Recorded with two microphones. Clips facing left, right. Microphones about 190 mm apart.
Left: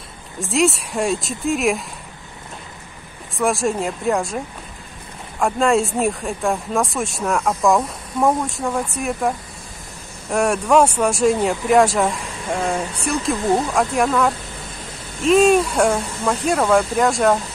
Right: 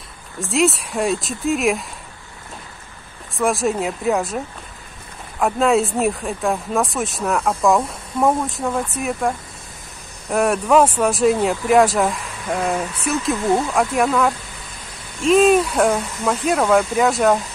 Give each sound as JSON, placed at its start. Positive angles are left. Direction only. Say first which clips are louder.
{"t": 0.4, "sound": "speech", "louder": "even", "side_deg": 0}
{"t": 3.3, "sound": "speech", "louder": "even", "side_deg": 0}
{"t": 5.4, "sound": "speech", "louder": "right 1 dB", "side_deg": 0}